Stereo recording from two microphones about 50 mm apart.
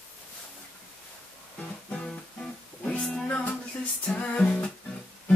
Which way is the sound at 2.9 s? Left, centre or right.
Centre.